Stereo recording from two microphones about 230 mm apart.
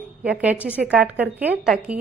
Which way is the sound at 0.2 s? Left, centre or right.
Centre.